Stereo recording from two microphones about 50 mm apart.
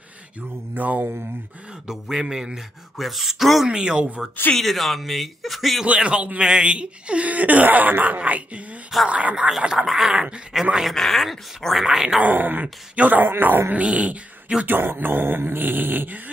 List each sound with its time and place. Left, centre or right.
0.7 s speech: right
1.9 s speech: centre
3.6 s speech: centre
4.6 s speech: centre
5.9 s speech: right
9.8 s dog: centre
10.1 s speech: centre
10.5 s speech: centre
12.2 s speech: right
12.9 s speech: right
13.2 s speech: right
13.8 s speech: right
14.7 s speech: right